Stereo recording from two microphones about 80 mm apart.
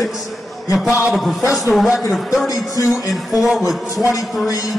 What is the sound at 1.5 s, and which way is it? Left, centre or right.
A man's voice, centre.